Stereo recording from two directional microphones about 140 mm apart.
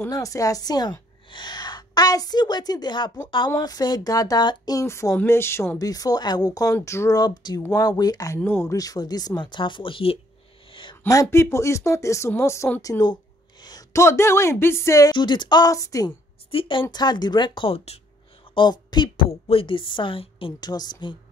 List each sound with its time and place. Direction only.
0.1 s a woman's voice: 25° left (ahead or behind)
8.4 s speech: 15° left (ahead or behind); by 10.1 s 40° left (ahead or behind)
10.7 s a sound: 35° left (ahead or behind)
11.1 s speech: 20° left (ahead or behind)
16.4 s a woman's voice: 40° left (ahead or behind)
18.5 s a woman's voice: 35° left (ahead or behind)